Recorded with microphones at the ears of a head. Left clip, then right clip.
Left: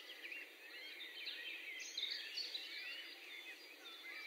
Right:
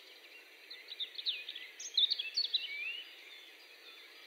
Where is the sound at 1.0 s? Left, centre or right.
Right.